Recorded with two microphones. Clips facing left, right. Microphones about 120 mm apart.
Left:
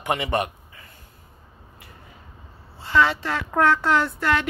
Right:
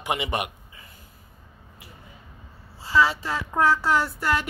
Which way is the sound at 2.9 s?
5° right (ahead or behind).